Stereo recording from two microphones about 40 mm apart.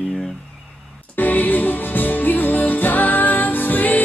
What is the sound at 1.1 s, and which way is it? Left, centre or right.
Music, left.